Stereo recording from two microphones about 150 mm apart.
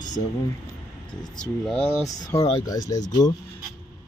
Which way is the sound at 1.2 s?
5° left (ahead or behind).